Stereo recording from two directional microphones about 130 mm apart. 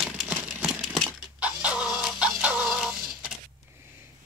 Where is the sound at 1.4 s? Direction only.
10° right (ahead or behind).